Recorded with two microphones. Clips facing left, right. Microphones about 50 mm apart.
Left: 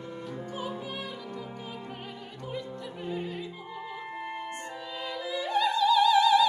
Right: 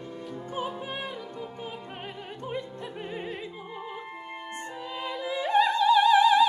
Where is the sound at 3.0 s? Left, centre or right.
Right.